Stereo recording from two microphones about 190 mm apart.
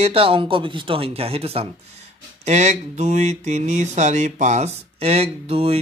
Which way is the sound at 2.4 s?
35° right (ahead or behind).